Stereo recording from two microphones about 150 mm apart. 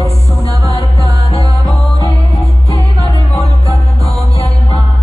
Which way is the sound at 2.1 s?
40° left (ahead or behind).